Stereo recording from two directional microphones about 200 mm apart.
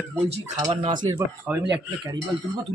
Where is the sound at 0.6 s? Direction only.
20° right (ahead or behind).